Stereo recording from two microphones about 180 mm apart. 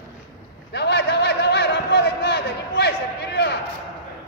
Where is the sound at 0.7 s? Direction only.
70° left (ahead or behind).